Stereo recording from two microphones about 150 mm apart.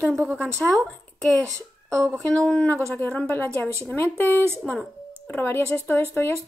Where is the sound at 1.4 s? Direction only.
20° right (ahead or behind).